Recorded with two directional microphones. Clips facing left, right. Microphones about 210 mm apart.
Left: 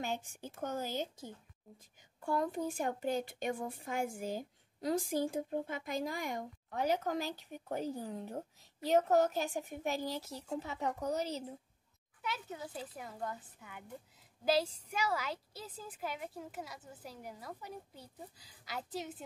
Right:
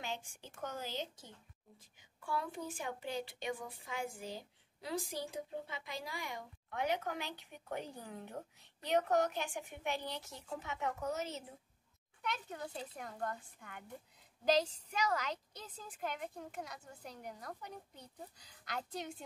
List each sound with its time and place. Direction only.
0.0 s a woman's voice: 45° left (ahead or behind)
12.2 s a woman's voice: 5° left (ahead or behind)